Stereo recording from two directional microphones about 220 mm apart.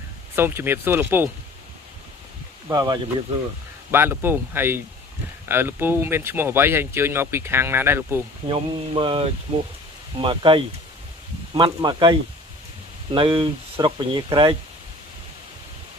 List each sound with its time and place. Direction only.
0.4 s speech: 10° right (ahead or behind)
2.7 s speech: 20° right (ahead or behind)
8.5 s speech: 20° right (ahead or behind)